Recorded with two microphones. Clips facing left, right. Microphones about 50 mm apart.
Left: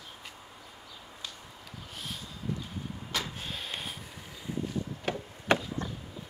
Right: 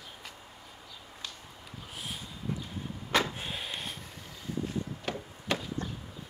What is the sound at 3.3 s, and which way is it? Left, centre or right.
Vehicle, centre.